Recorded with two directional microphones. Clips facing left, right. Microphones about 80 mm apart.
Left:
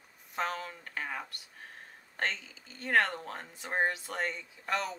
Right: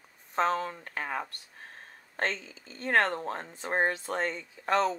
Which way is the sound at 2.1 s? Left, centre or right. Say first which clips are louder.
Right 3 dB; right.